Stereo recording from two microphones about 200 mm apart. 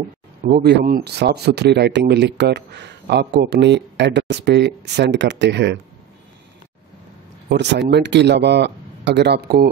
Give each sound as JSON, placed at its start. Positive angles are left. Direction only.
{"t": 0.4, "sound": "speech", "side_deg": -45}
{"t": 7.4, "sound": "speech", "side_deg": -60}